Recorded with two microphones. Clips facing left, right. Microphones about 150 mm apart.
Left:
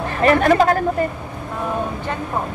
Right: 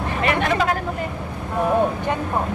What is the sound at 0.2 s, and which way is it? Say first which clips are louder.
Speech: left 7 dB; 40° left (ahead or behind).